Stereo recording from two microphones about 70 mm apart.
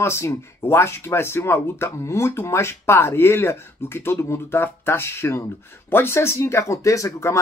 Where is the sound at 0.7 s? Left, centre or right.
Left.